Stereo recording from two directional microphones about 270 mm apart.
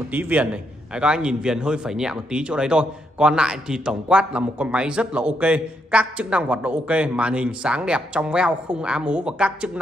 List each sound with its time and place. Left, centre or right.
0.1 s a man's voice: centre